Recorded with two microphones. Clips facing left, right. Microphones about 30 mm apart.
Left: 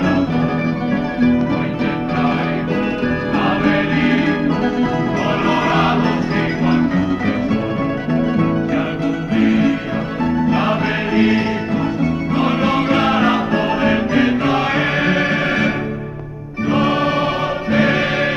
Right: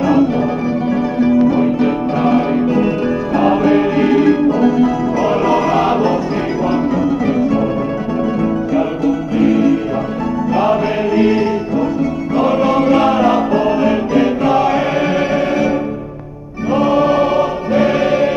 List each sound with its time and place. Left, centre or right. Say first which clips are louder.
2.2 s music: right 7 dB; left
9.4 s music: right 3 dB; left
16.7 s music: right 4 dB; left